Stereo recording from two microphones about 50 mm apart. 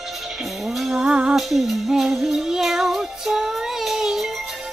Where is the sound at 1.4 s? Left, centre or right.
Centre.